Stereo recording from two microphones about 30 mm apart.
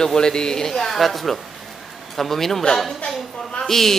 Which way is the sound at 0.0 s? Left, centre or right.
Left.